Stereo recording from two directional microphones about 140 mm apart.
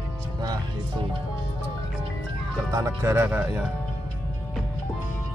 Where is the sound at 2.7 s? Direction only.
20° right (ahead or behind).